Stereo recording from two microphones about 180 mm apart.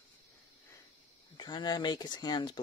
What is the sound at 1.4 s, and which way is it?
Speech, 25° left (ahead or behind).